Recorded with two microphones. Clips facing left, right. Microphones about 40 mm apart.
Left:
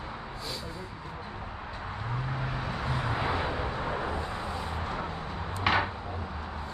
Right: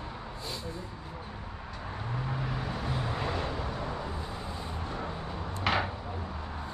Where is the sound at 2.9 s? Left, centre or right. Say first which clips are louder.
Left 4 dB; left.